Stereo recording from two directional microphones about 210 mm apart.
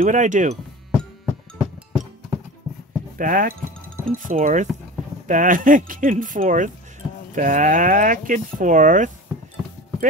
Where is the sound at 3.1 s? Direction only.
40° right (ahead or behind).